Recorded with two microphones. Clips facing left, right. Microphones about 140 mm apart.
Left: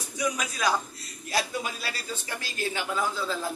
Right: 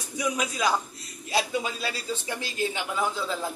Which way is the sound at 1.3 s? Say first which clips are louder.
Right 3 dB; 20° right (ahead or behind).